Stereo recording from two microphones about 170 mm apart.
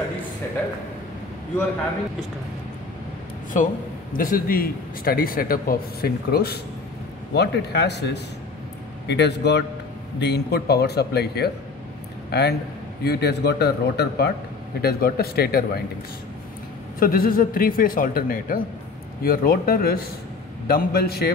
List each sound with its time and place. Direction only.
4.2 s a man's voice: 55° left (ahead or behind)
7.3 s speech: 80° left
9.0 s a man's voice: 90° left; by 15.8 s 65° left (ahead or behind)
17.0 s a man's voice: 60° left (ahead or behind)